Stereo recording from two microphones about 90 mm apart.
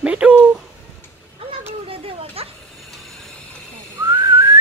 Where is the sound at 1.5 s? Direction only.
90° right.